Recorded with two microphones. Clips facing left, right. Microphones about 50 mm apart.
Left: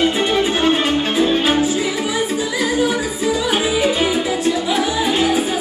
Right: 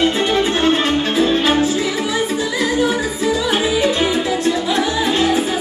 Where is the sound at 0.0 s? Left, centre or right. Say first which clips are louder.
Right 1 dB; centre.